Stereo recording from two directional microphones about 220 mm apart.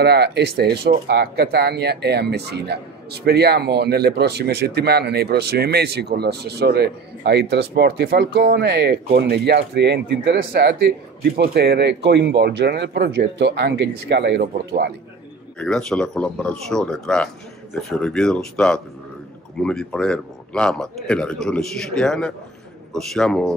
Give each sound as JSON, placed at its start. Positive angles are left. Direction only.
{"t": 0.0, "sound": "speech", "side_deg": -45}
{"t": 15.6, "sound": "speech", "side_deg": 5}